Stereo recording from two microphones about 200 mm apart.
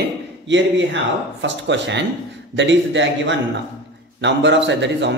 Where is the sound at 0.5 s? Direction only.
65° right (ahead or behind).